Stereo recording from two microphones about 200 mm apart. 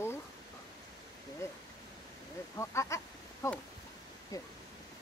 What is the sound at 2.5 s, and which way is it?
Speech, 15° left (ahead or behind).